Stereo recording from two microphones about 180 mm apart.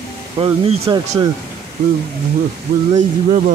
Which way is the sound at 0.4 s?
30° right (ahead or behind).